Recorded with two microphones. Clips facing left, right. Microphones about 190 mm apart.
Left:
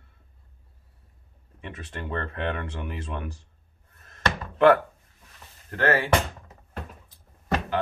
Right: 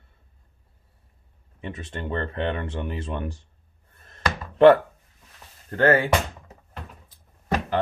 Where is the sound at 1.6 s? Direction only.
30° right (ahead or behind).